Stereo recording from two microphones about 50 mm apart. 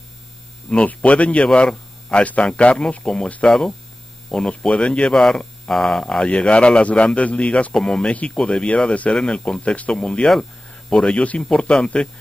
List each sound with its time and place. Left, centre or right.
0.8 s speech: left
3.4 s speech: centre
6.2 s speech: left